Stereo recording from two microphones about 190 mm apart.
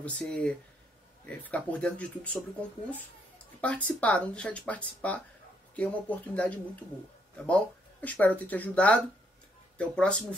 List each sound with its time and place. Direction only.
0.0 s speech: 5° left (ahead or behind)
3.6 s speech: 5° left (ahead or behind)